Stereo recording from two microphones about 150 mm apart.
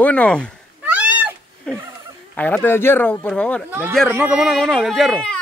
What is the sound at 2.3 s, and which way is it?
Speech, 10° left (ahead or behind).